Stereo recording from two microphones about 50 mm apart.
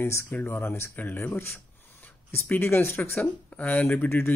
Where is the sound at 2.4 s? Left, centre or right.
Left.